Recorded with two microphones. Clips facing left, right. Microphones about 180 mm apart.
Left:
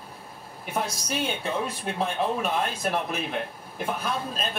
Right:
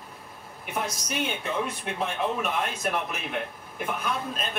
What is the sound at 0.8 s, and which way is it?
Speech, 35° left (ahead or behind).